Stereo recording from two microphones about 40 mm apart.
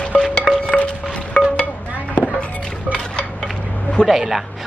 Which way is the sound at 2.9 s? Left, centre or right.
Centre.